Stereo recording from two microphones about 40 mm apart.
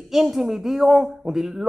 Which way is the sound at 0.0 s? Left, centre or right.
Centre.